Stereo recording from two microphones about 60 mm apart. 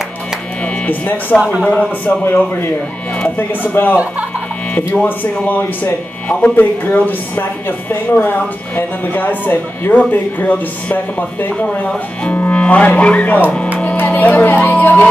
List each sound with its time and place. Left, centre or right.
0.8 s speech: left
1.6 s speech: centre
2.2 s speech: left
3.9 s speech: right
5.0 s speech: left